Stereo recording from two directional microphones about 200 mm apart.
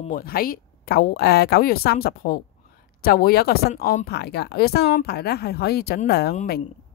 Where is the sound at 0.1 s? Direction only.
50° left (ahead or behind).